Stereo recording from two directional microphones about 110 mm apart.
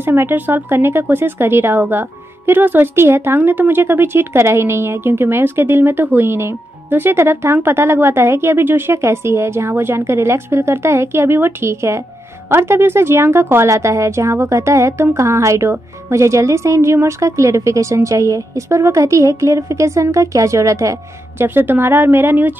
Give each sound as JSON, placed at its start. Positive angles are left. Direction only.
{"t": 0.0, "sound": "speech", "side_deg": -20}